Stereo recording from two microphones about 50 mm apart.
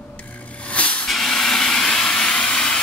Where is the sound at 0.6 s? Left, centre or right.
Left.